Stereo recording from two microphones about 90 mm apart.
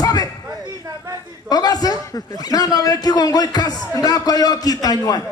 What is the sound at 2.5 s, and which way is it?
A man's voice, 45° left (ahead or behind).